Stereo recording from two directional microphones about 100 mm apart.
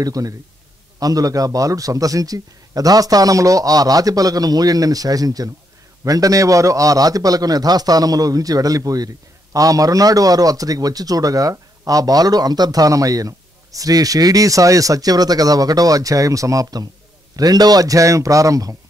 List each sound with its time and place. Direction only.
0.0 s a man's voice: 35° right (ahead or behind)